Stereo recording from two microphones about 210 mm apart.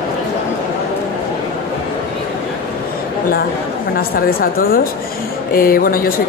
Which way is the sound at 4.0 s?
45° left (ahead or behind).